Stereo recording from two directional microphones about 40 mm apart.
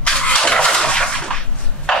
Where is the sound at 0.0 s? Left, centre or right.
Left.